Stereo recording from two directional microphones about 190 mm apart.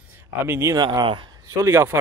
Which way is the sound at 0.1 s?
15° right (ahead or behind).